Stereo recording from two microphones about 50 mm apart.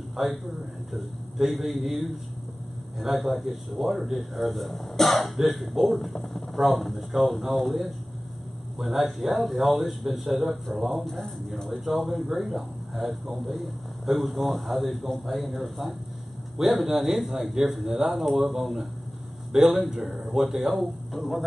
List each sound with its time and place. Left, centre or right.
0.1 s speech: centre
20.1 s speech: right
20.3 s speech: centre